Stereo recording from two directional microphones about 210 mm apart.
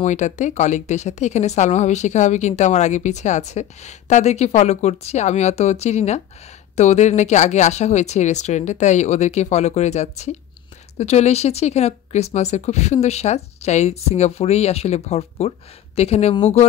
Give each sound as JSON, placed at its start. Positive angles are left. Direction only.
{"t": 0.0, "sound": "speech", "side_deg": 35}